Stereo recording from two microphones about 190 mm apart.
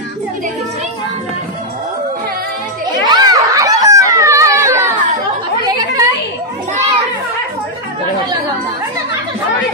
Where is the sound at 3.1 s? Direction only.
20° right (ahead or behind).